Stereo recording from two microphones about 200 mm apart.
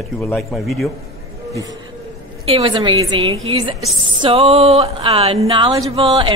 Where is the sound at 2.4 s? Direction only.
30° right (ahead or behind).